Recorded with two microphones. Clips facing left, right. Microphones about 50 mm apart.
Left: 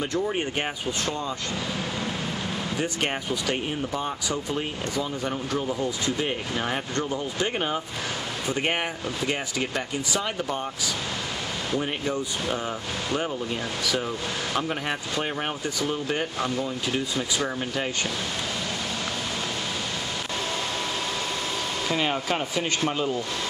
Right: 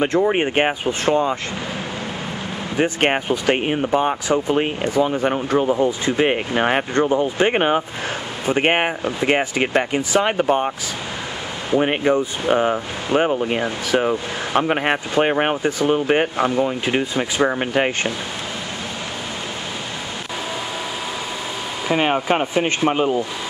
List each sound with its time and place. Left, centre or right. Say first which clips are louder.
0.1 s speech: right 9 dB; right
2.8 s speech: right 12 dB; right
6.1 s speech: right 9 dB; right
11.8 s speech: right 10 dB; right
21.9 s speech: right 9 dB; right